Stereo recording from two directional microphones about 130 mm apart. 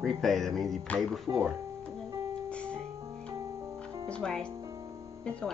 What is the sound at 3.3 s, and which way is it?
Music, 25° right (ahead or behind).